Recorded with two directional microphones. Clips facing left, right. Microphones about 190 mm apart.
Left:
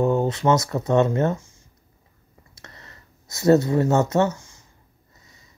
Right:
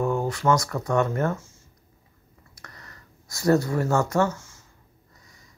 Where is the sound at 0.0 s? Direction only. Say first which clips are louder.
Left 4 dB; 20° left (ahead or behind).